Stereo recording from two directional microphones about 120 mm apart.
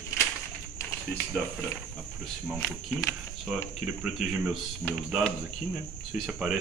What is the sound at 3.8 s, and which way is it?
Speech, 10° right (ahead or behind).